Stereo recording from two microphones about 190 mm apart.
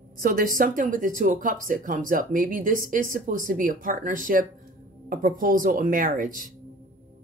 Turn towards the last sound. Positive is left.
turn(degrees=-45)  # may be behind; listen again after turning